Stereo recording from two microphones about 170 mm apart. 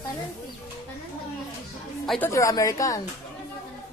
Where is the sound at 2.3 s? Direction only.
20° left (ahead or behind).